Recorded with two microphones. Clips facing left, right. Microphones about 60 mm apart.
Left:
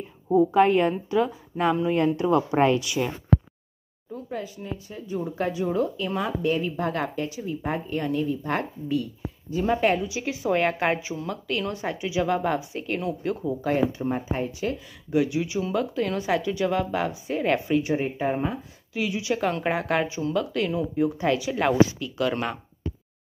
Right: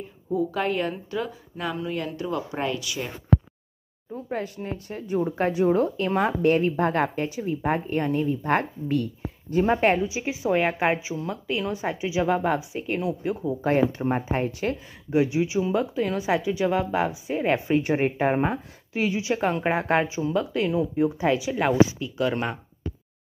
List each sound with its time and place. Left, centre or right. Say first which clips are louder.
0.4 s a woman's voice: left 7 dB; left
4.3 s speech: right 3 dB; right
8.9 s speech: right 1 dB; right
9.7 s a woman's voice: even; right; by 13.4 s centre
13.6 s speech: right 4 dB; right
15.0 s a woman's voice: right 2 dB; right
17.8 s speech: right 3 dB; right
19.5 s a woman's voice: right 1 dB; centre
19.8 s a woman's voice: right 2 dB; right; by 21.9 s centre
21.9 s speech: right 1 dB; centre